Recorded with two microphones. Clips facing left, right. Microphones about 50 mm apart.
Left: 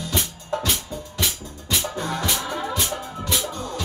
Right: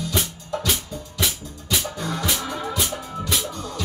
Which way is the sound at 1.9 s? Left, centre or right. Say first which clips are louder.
Left 1 dB; left.